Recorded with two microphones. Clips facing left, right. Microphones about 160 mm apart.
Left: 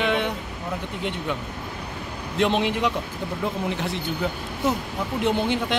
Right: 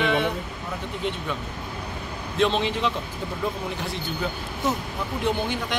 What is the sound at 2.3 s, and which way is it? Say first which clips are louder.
Speech: left 1 dB; 15° left (ahead or behind).